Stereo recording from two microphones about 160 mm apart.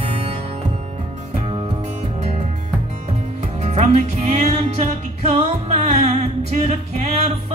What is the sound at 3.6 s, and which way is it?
Music, 45° right (ahead or behind).